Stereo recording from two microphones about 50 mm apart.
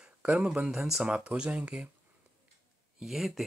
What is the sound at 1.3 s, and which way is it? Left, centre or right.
Speech, right.